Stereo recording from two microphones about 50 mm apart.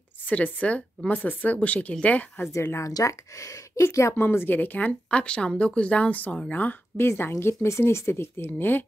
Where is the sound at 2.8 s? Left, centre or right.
Left.